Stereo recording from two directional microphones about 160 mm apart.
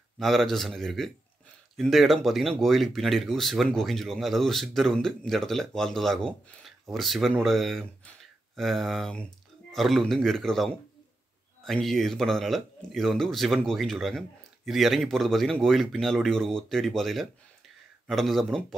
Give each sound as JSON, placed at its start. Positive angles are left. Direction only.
{"t": 0.2, "sound": "speech", "side_deg": 0}